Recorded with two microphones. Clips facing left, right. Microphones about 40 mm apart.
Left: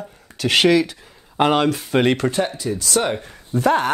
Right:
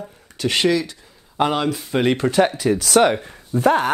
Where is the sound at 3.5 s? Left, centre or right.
Left.